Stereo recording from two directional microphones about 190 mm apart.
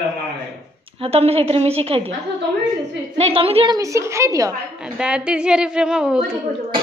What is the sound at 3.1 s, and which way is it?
Speech, 30° right (ahead or behind).